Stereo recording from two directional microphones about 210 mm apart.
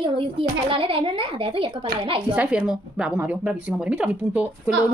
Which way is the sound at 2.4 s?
5° right (ahead or behind).